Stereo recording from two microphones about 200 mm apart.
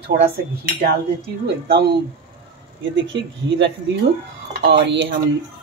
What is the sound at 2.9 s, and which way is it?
Speech, 70° right (ahead or behind).